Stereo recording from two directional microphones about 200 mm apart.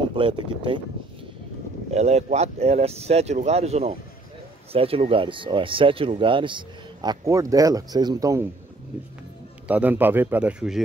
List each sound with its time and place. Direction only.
0.1 s speech: 25° right (ahead or behind)
1.9 s speech: 35° right (ahead or behind); by 8.5 s 15° right (ahead or behind)
9.7 s speech: 10° right (ahead or behind)